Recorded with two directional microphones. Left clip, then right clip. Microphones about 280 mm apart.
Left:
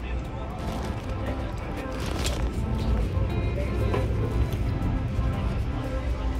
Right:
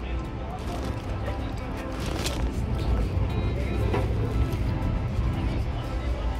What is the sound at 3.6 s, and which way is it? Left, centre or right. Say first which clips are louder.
Music: even; centre.